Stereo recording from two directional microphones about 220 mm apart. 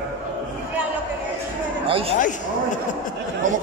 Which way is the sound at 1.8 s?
25° right (ahead or behind).